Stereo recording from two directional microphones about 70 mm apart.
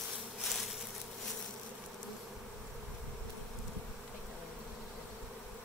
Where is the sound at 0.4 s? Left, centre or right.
Centre.